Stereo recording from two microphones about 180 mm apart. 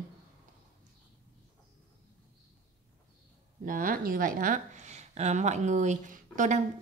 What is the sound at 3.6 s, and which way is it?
Speech, 50° right (ahead or behind).